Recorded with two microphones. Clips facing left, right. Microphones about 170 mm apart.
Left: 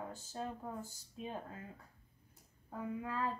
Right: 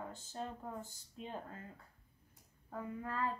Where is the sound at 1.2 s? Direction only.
10° left (ahead or behind).